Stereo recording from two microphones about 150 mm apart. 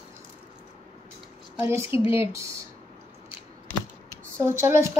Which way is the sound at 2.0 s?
35° left (ahead or behind).